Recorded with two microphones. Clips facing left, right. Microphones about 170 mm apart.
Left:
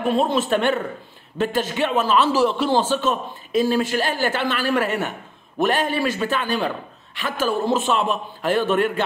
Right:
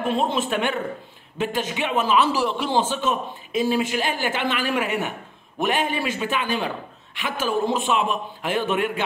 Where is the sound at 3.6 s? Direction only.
15° right (ahead or behind).